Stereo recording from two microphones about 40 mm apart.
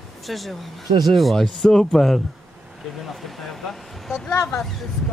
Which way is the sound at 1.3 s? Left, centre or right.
Centre.